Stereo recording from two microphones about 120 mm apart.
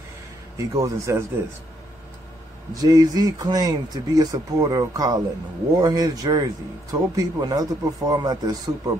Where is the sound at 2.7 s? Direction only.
30° right (ahead or behind).